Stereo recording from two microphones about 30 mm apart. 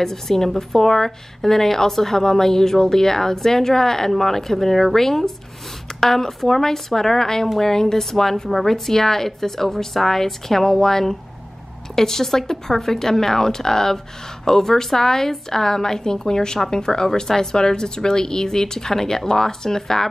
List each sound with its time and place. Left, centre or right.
0.0 s a woman's voice: centre